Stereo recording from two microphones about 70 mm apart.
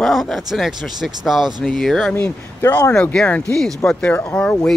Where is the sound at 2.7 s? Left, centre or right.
Centre.